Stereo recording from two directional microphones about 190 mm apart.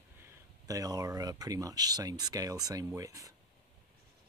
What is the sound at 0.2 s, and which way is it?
Speech, 15° right (ahead or behind).